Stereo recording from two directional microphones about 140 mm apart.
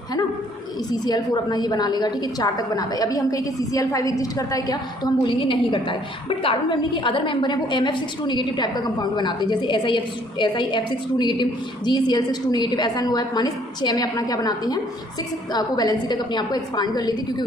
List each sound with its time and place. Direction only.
0.9 s a woman's voice: 30° left (ahead or behind)